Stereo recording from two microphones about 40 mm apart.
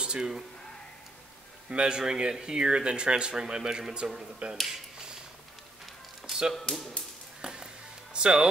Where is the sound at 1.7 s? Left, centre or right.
Right.